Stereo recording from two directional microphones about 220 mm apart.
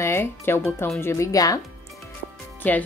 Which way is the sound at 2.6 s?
5° left (ahead or behind).